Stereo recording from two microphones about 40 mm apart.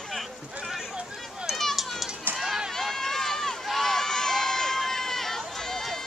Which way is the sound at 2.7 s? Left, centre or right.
Centre.